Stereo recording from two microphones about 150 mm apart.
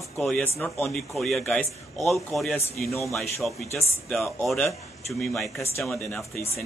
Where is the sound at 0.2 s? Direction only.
10° left (ahead or behind).